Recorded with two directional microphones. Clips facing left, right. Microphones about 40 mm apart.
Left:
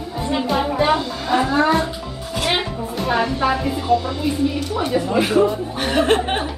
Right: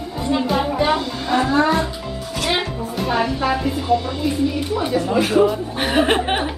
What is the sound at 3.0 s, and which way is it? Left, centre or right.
A woman's voice, centre.